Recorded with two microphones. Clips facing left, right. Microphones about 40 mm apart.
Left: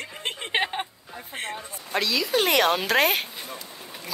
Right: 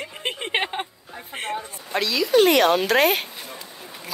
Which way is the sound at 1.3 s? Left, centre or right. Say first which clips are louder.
Right 4 dB; right.